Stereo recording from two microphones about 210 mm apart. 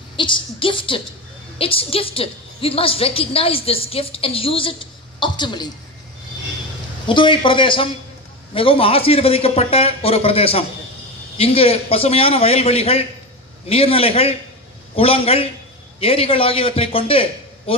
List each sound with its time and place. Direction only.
0.1 s a woman's voice: 25° left (ahead or behind)
7.1 s a woman's voice: 25° left (ahead or behind)